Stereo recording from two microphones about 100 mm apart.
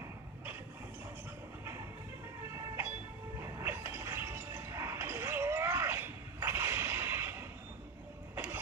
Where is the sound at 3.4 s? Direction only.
25° right (ahead or behind).